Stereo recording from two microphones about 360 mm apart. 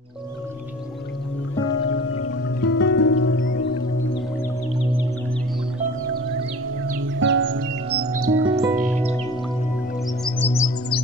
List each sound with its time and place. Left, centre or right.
2.1 s music: left
6.9 s music: right
8.0 s music: right
8.5 s music: centre
10.2 s music: centre